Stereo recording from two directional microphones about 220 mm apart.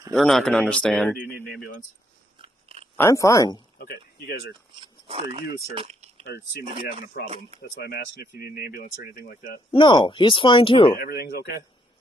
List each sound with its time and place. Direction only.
0.1 s speech: centre (ahead or behind)
2.3 s biting: 25° right (ahead or behind)
3.0 s speech: 15° left (ahead or behind)
3.7 s speech: 45° left (ahead or behind)
4.7 s speech: 25° right (ahead or behind)
5.8 s a sound: 30° right (ahead or behind)
7.2 s speech: 50° left (ahead or behind)
9.7 s speech: 20° left (ahead or behind)
10.9 s speech: 45° left (ahead or behind)